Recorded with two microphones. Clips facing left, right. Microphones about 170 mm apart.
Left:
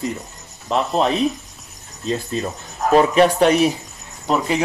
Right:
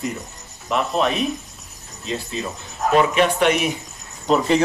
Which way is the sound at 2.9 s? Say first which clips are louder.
Left 4 dB; 35° left (ahead or behind).